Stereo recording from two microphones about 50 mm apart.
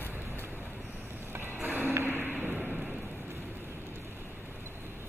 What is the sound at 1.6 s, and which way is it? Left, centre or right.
Music, right.